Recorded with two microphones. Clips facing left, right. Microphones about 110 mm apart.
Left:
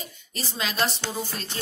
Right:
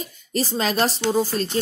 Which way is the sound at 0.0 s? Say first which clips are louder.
Right 11 dB; 40° right (ahead or behind).